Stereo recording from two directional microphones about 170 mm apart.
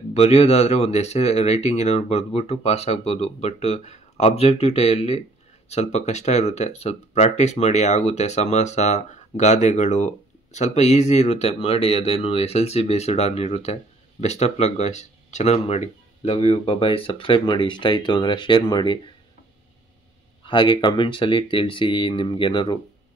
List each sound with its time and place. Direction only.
0.1 s speech: 40° left (ahead or behind)
20.4 s speech: 30° left (ahead or behind)